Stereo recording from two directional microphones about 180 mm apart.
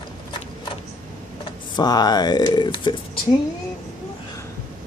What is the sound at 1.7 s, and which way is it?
Speech, 20° left (ahead or behind).